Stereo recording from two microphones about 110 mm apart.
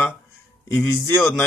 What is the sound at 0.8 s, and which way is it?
Speech, 20° left (ahead or behind).